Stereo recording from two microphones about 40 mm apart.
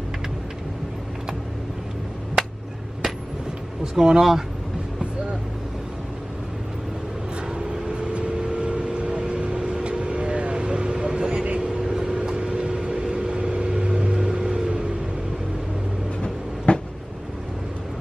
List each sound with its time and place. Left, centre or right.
2.4 s a sound: centre
3.9 s speech: centre
7.5 s vehicle: right
16.2 s train: left